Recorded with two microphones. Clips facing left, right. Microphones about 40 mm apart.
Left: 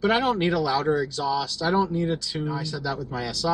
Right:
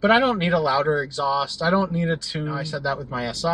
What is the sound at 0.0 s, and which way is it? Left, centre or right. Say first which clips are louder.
Speech: right 4 dB; right.